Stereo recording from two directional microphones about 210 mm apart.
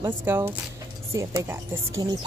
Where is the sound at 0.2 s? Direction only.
10° right (ahead or behind).